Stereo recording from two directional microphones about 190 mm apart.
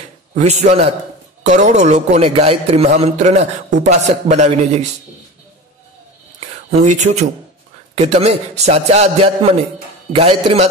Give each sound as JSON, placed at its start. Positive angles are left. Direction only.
{"t": 0.4, "sound": "a man's voice", "side_deg": -35}
{"t": 6.4, "sound": "a man's voice", "side_deg": -40}